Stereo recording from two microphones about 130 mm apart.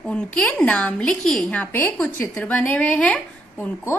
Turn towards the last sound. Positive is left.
turn(degrees=15)  # may be behind; listen again after turning